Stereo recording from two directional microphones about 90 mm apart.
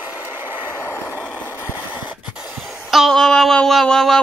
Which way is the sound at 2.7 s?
Centre (ahead or behind).